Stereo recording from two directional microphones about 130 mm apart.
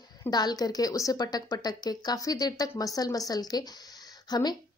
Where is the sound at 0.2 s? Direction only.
30° left (ahead or behind).